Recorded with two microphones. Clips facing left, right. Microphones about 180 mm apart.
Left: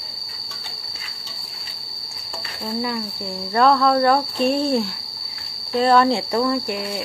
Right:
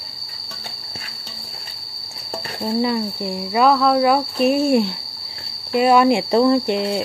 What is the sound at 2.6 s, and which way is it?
Speech, 20° right (ahead or behind).